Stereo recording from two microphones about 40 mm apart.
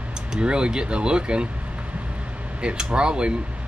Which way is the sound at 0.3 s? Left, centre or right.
Right.